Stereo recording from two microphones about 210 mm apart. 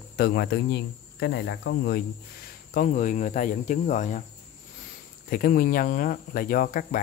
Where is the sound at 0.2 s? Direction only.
50° left (ahead or behind).